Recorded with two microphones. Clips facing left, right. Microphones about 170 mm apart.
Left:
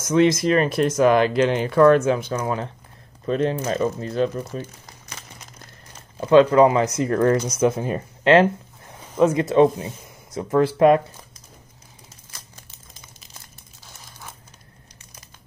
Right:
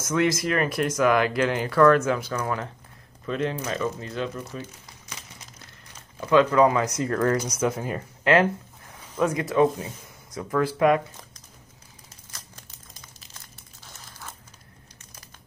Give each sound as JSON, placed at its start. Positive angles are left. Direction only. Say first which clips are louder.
{"t": 0.1, "sound": "speech", "louder": "left 6 dB", "side_deg": 20}
{"t": 3.3, "sound": "speech", "louder": "left 6 dB", "side_deg": 35}
{"t": 6.1, "sound": "speech", "louder": "left 5 dB", "side_deg": 30}